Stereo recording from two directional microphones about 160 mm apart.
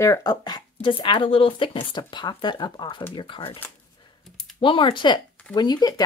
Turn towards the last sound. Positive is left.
turn(degrees=25)  # may be behind; listen again after turning